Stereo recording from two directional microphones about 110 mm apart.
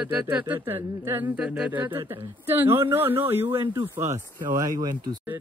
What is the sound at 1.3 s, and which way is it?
Speech, 10° right (ahead or behind).